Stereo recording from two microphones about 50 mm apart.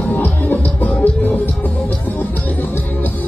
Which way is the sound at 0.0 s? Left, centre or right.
Left.